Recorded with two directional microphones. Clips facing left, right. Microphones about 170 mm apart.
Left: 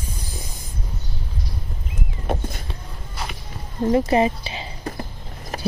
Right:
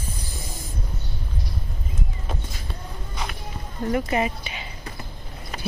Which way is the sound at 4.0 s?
30° left (ahead or behind).